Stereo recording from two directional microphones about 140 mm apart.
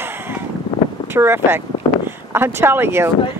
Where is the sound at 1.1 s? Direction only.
15° right (ahead or behind).